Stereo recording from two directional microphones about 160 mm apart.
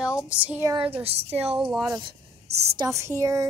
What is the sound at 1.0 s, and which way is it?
Speech, 40° right (ahead or behind).